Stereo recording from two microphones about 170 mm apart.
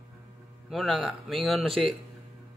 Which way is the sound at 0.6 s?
Centre (ahead or behind).